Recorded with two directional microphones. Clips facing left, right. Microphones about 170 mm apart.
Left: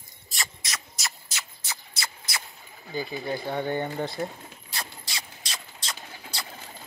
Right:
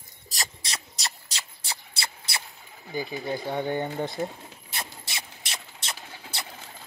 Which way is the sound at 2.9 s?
15° right (ahead or behind).